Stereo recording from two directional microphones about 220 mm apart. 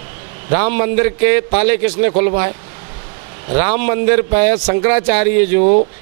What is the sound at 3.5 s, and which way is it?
A man's voice, 15° right (ahead or behind).